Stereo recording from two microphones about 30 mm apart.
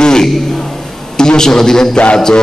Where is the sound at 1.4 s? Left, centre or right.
Centre.